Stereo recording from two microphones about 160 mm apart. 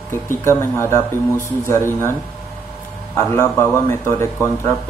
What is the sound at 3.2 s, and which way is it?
A man's voice, 15° left (ahead or behind).